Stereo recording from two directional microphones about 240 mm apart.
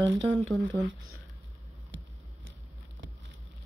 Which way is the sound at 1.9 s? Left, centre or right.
Right.